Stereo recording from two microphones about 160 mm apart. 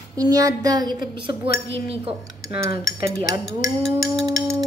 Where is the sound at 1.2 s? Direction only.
35° right (ahead or behind).